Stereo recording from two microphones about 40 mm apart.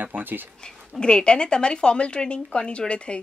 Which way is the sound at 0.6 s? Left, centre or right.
Left.